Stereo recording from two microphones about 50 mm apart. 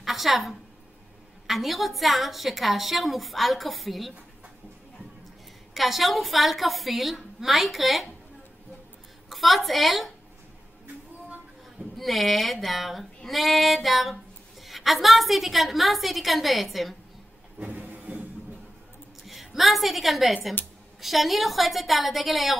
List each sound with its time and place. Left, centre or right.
0.0 s a woman's voice: centre
1.5 s female singing: centre
5.8 s female singing: centre
9.3 s female singing: centre
12.0 s female singing: centre
17.6 s vehicle: right
19.2 s a woman's voice: centre
21.0 s female singing: centre